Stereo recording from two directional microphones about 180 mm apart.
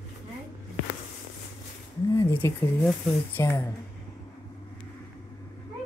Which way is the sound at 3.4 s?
15° left (ahead or behind).